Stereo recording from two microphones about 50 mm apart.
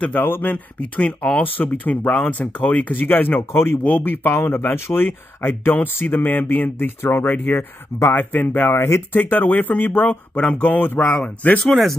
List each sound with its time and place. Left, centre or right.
0.0 s speech: left
0.9 s speech: left